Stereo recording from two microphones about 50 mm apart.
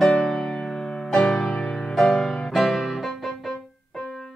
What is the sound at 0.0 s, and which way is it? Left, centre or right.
Music, centre.